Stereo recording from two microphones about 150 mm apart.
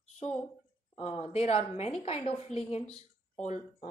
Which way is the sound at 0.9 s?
45° left (ahead or behind).